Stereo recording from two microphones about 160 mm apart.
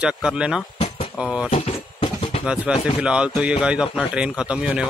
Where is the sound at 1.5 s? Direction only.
35° left (ahead or behind).